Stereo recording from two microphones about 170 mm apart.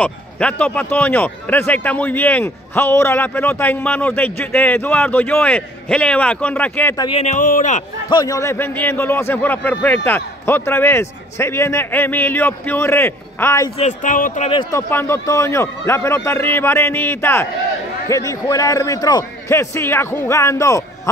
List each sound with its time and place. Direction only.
0.0 s a man's voice: 5° left (ahead or behind)
7.2 s speech: 45° left (ahead or behind)
8.1 s a man's voice: 20° left (ahead or behind)
13.7 s speech: 45° left (ahead or behind)
14.5 s a man's voice: 25° left (ahead or behind)
14.8 s a man's voice: 15° left (ahead or behind)